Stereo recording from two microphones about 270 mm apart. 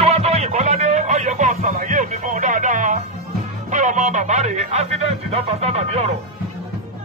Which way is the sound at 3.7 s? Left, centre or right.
Right.